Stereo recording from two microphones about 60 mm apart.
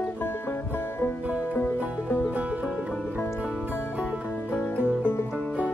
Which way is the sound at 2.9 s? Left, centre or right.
Left.